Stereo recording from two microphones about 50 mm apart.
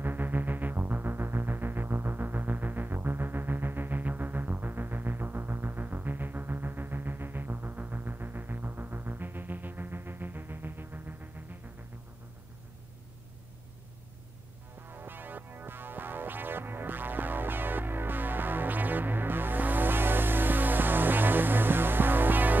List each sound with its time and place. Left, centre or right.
0.0 s music: right
14.9 s music: right